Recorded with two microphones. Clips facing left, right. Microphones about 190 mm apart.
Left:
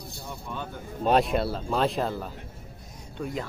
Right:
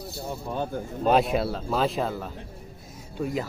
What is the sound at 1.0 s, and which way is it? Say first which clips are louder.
A man's voice: right 1 dB; centre (ahead or behind).